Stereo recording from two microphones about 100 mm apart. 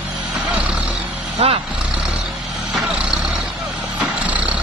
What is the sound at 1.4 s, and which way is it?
Vehicle, 75° right (ahead or behind).